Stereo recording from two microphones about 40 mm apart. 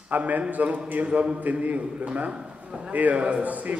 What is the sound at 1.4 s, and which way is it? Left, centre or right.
Speech, right.